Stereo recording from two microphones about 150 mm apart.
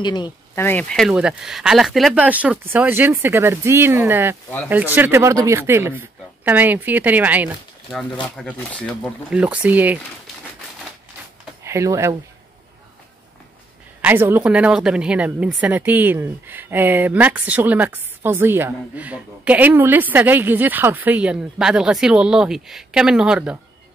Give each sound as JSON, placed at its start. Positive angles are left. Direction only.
{"t": 0.0, "sound": "speech", "side_deg": 30}
{"t": 0.6, "sound": "speech", "side_deg": 15}
{"t": 0.8, "sound": "speech", "side_deg": 0}
{"t": 7.9, "sound": "speech", "side_deg": 5}
{"t": 9.3, "sound": "speech", "side_deg": -10}
{"t": 11.6, "sound": "speech", "side_deg": -20}
{"t": 14.0, "sound": "speech", "side_deg": -15}